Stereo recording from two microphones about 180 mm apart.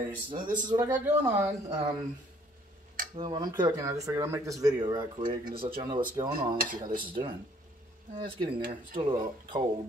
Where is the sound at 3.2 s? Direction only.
25° right (ahead or behind).